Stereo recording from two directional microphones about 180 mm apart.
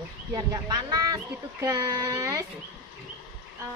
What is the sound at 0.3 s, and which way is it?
Speech, 20° right (ahead or behind).